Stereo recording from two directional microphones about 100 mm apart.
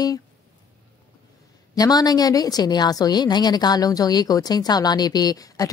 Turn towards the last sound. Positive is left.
turn(degrees=40)  # may be behind; listen again after turning